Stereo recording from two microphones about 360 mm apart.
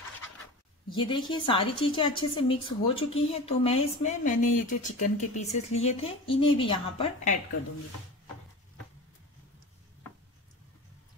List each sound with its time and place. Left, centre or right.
0.8 s a woman's voice: centre